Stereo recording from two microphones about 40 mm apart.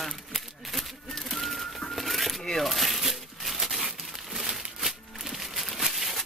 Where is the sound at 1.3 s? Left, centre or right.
Centre.